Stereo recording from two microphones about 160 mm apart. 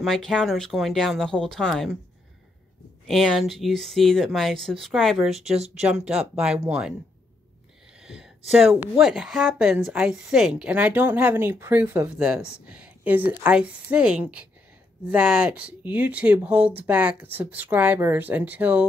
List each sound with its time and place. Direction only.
0.0 s speech: centre (ahead or behind)
3.1 s speech: centre (ahead or behind)
8.0 s a sound: 5° right (ahead or behind)
8.5 s speech: 5° right (ahead or behind)